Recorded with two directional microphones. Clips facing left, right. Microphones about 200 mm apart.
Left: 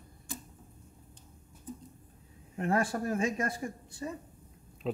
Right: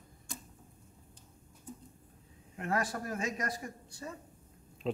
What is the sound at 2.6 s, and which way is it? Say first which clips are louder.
Speech: left 5 dB; 25° left (ahead or behind).